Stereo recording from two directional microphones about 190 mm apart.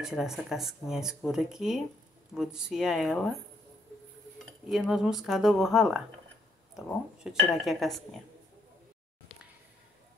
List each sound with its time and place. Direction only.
0.0 s speech: centre (ahead or behind)
4.5 s speech: centre (ahead or behind)
7.2 s speech: centre (ahead or behind)